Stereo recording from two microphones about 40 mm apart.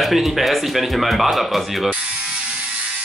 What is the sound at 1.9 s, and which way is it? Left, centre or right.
Ratchet, right.